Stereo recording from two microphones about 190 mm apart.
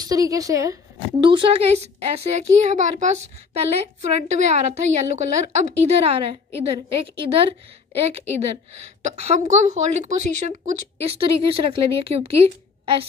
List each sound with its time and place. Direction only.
0.0 s a woman's voice: 20° right (ahead or behind)
1.2 s a woman's voice: 30° right (ahead or behind)